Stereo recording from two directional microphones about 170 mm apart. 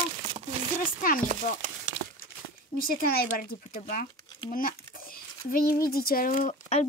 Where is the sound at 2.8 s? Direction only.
60° left (ahead or behind).